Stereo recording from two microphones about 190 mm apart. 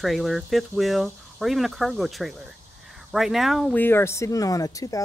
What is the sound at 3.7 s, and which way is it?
Speech, 10° left (ahead or behind).